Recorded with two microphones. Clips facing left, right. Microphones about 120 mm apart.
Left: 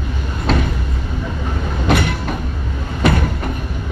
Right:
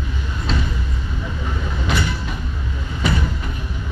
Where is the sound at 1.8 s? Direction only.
60° left (ahead or behind).